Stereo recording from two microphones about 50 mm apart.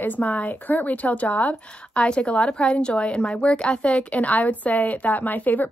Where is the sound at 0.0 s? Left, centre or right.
Left.